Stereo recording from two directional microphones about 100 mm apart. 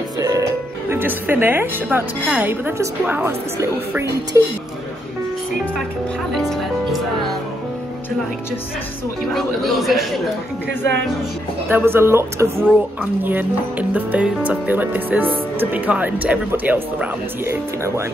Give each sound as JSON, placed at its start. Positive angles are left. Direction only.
{"t": 0.2, "sound": "music", "side_deg": -35}
{"t": 0.9, "sound": "speech", "side_deg": -20}
{"t": 6.3, "sound": "speech", "side_deg": 0}
{"t": 9.3, "sound": "speech", "side_deg": 0}
{"t": 11.7, "sound": "speech", "side_deg": -25}
{"t": 17.5, "sound": "speech", "side_deg": -30}